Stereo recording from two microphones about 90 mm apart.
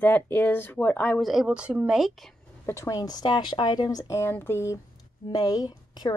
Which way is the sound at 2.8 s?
45° left (ahead or behind).